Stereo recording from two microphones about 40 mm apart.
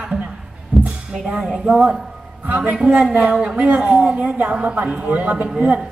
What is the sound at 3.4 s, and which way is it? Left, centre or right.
A man's voice, right.